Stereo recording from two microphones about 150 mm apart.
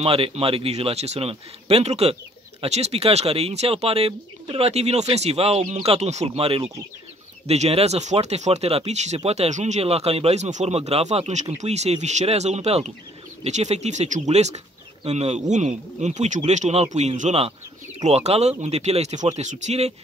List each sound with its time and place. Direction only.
0.0 s speech: 40° right (ahead or behind)